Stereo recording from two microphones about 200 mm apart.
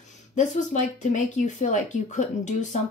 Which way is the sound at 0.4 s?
35° left (ahead or behind).